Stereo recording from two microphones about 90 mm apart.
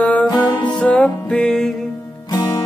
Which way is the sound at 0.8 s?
15° left (ahead or behind).